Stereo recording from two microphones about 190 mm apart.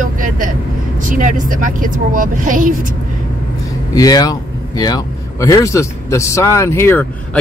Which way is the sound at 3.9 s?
20° left (ahead or behind).